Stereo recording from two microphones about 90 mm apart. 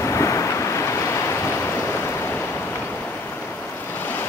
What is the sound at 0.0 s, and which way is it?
Waves, 35° left (ahead or behind).